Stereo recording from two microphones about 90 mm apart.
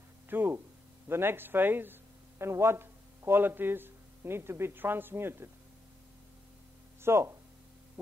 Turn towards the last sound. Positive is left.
turn(degrees=-30)  # may be behind; listen again after turning